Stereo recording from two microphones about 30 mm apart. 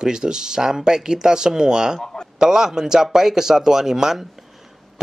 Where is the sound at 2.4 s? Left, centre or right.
Centre.